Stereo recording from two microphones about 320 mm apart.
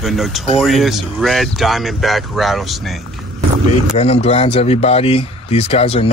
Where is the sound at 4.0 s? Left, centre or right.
Centre.